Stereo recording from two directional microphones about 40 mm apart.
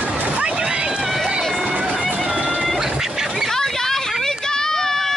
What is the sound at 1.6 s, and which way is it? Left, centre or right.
Run, right.